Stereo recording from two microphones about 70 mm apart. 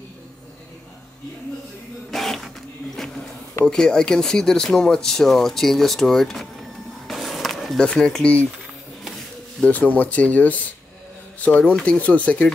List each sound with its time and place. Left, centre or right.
2.0 s printer: centre
3.6 s speech: centre
7.1 s a sound: centre
7.8 s speech: centre
9.7 s speech: left